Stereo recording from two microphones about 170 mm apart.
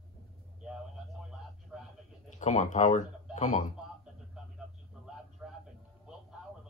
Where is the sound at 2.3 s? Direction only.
45° left (ahead or behind).